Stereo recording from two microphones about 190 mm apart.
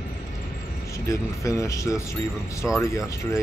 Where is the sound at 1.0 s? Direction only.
15° left (ahead or behind).